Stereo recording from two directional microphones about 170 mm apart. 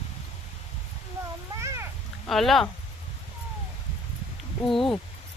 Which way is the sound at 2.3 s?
Centre (ahead or behind).